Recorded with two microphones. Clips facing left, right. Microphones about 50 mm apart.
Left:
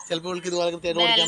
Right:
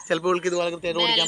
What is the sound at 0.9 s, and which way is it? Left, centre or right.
Speech, centre.